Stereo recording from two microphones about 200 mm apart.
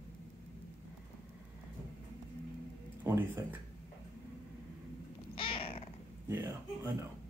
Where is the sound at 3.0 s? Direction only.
10° right (ahead or behind).